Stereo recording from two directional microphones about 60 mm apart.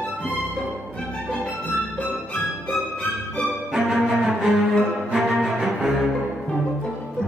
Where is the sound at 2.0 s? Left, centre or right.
Left.